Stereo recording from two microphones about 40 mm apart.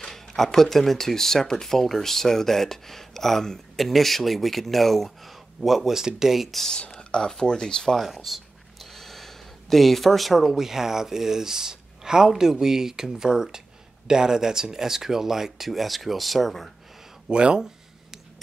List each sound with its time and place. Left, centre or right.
0.0 s speech: centre
5.9 s speech: centre
7.0 s speech: left
8.0 s speech: centre
17.3 s speech: right